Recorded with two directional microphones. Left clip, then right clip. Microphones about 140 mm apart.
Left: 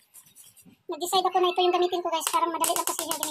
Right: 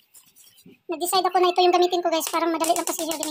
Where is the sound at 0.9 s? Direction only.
50° right (ahead or behind).